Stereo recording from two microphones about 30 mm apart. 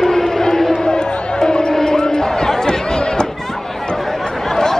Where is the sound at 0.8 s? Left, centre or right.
Left.